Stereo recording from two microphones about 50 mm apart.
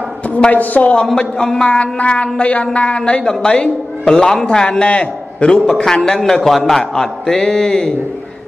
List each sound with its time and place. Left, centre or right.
0.5 s speech: left
1.0 s a woman's voice: centre